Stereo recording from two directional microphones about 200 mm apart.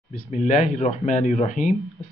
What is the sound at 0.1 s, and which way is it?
Speech, 35° left (ahead or behind).